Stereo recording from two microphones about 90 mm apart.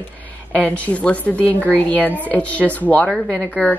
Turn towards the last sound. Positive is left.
turn(degrees=10)  # may be behind; listen again after turning